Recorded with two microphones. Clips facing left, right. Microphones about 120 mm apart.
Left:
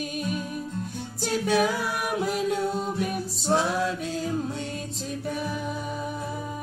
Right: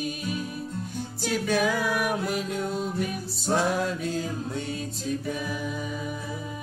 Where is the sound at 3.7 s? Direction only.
50° right (ahead or behind).